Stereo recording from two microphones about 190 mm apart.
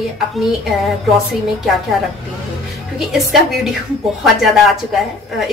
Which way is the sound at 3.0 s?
Centre (ahead or behind).